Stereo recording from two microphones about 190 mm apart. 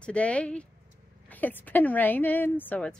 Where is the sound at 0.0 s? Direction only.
5° left (ahead or behind).